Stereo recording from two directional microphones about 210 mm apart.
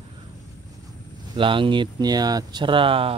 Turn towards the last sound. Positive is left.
turn(degrees=-25)  # may be behind; listen again after turning